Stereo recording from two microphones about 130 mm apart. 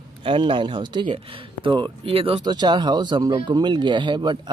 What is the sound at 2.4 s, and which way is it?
Speech, 35° right (ahead or behind).